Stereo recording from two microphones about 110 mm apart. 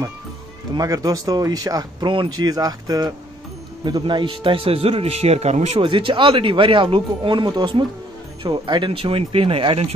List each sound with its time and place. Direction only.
0.7 s speech: 35° right (ahead or behind)
4.0 s speech: 50° right (ahead or behind); by 5.8 s 90° right
5.8 s speech: 50° right (ahead or behind)